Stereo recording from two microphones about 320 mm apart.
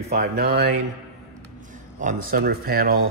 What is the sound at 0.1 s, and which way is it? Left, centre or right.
Speech, right.